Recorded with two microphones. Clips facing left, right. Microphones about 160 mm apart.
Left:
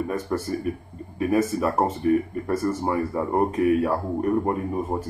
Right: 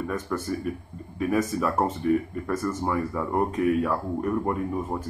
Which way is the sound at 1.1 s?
5° left (ahead or behind).